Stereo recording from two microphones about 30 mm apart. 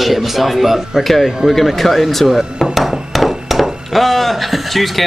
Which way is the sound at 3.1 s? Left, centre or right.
Centre.